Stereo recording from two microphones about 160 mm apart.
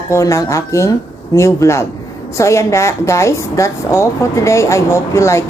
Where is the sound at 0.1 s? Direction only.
20° left (ahead or behind).